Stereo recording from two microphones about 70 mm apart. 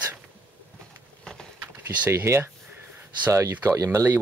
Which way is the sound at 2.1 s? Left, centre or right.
Right.